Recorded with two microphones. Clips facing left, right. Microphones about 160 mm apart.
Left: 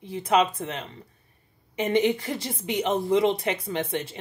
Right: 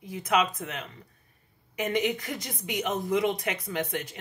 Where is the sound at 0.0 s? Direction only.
30° left (ahead or behind).